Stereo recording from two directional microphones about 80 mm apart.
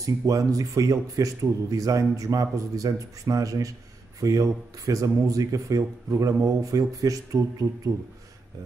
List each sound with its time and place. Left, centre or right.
0.0 s a man's voice: right